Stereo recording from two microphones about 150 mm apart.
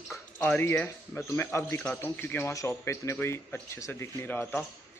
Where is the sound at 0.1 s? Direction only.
15° left (ahead or behind).